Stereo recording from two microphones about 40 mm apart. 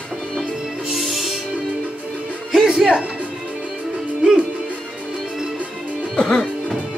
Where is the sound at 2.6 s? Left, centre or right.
Centre.